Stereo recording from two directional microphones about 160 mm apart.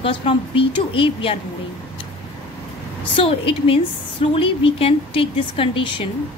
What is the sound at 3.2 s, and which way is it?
A woman's voice, 35° left (ahead or behind).